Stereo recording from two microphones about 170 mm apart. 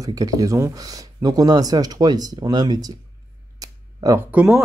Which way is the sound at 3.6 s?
20° right (ahead or behind).